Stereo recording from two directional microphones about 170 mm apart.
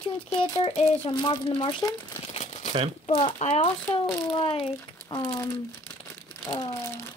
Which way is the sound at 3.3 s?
40° left (ahead or behind).